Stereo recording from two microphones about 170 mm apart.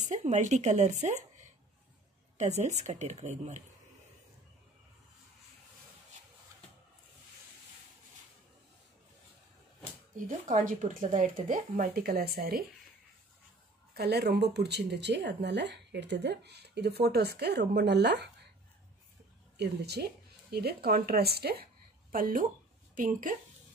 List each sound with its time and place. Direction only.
0.1 s speech: 45° right (ahead or behind)
2.3 s speech: 45° right (ahead or behind)
10.1 s speech: 50° right (ahead or behind)
13.9 s speech: 70° right (ahead or behind)
19.5 s speech: 75° right (ahead or behind)
22.1 s speech: 55° right (ahead or behind)